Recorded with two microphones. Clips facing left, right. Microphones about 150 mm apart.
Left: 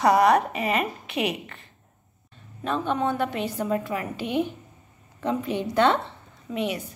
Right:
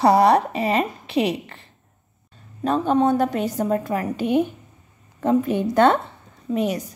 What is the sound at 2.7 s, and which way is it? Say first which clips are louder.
A woman's voice: right 7 dB; 35° right (ahead or behind).